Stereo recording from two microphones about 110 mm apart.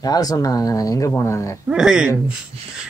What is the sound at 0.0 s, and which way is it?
A man's voice, 35° left (ahead or behind).